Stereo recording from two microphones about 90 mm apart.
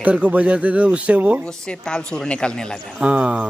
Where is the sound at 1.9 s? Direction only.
10° left (ahead or behind).